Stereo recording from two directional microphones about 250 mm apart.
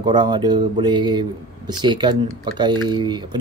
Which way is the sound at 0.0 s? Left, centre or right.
Centre.